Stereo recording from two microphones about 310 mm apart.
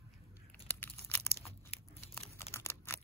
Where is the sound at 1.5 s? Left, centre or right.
Centre.